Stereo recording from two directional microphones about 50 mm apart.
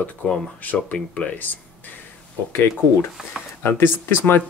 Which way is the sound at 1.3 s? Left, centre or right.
Left.